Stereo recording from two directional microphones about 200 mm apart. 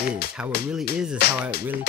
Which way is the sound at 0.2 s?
50° left (ahead or behind).